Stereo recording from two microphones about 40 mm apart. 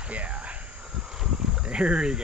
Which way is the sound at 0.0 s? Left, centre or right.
Right.